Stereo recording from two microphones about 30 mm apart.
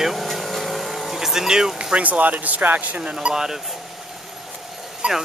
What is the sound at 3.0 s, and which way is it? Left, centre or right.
Speech, right.